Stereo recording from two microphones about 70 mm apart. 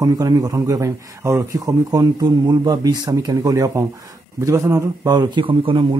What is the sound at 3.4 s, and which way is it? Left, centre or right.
Speech, right.